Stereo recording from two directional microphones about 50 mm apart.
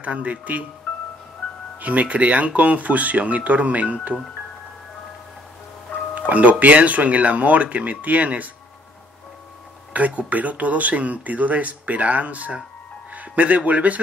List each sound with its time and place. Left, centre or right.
0.0 s speech: right
0.9 s music: left
1.8 s speech: right
6.1 s speech: right
9.9 s speech: right